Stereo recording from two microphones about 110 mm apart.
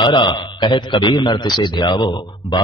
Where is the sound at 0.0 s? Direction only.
45° left (ahead or behind).